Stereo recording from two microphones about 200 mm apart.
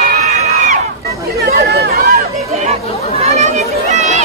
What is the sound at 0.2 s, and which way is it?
Crowd, 35° right (ahead or behind).